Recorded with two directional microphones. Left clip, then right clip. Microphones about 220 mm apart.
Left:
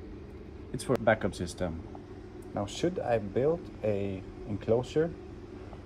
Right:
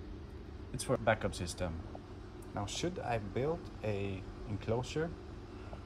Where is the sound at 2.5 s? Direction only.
20° right (ahead or behind).